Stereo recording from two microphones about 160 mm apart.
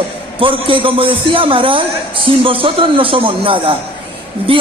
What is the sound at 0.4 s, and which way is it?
A man's voice, 35° right (ahead or behind).